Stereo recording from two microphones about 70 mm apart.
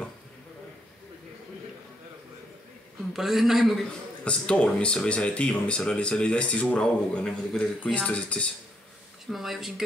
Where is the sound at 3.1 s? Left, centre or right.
Centre.